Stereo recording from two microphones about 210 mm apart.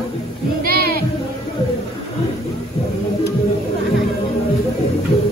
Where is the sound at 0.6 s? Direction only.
45° right (ahead or behind).